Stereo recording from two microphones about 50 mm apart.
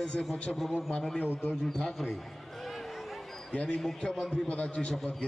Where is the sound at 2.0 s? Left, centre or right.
Centre.